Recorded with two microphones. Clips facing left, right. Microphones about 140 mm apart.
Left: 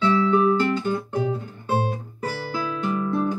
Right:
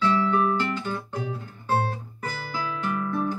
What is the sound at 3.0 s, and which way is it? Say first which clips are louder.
Guitar: left 4 dB; 25° left (ahead or behind).